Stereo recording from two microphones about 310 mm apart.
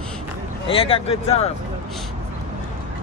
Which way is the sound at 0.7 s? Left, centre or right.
Centre.